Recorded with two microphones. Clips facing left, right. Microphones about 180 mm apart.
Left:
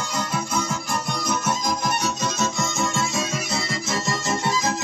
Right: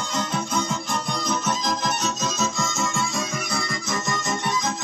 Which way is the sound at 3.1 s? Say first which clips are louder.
Left 2 dB; 25° left (ahead or behind).